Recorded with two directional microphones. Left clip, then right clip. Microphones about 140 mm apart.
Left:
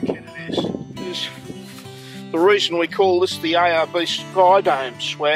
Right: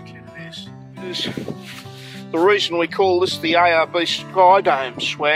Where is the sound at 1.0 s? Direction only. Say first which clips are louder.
Right 4 dB; 15° right (ahead or behind).